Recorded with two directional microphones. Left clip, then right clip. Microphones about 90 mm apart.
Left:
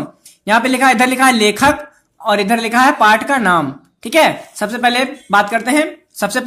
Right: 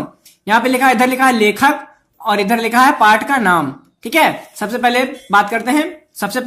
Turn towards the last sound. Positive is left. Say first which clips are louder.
# left 2 dB
turn(degrees=45)  # may be behind; listen again after turning